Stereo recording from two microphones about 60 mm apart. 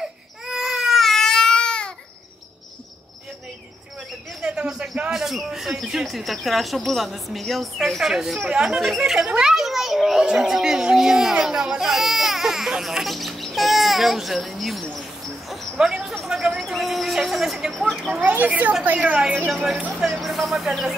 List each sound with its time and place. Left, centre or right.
0.5 s baby cry: centre
4.4 s a sound: centre
5.1 s speech: centre
9.3 s children playing: centre
10.2 s speech: centre
15.0 s a sound: centre
15.8 s speech: centre
18.5 s a woman's voice: right
19.5 s speech: centre